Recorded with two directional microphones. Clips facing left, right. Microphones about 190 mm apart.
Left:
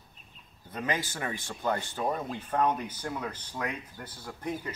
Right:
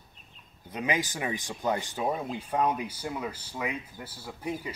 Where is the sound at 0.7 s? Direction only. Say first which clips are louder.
Right 2 dB; 15° right (ahead or behind).